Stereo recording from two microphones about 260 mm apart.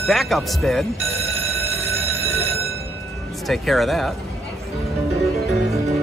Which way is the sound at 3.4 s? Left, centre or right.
Centre.